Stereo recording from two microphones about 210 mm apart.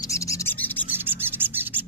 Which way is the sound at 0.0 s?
15° left (ahead or behind).